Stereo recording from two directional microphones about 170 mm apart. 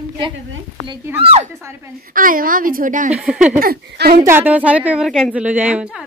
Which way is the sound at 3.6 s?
60° right (ahead or behind).